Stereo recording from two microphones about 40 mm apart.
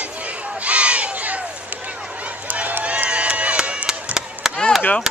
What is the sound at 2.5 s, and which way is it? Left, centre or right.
Run, right.